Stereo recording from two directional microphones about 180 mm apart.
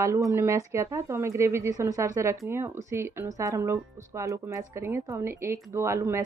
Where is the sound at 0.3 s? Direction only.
15° right (ahead or behind).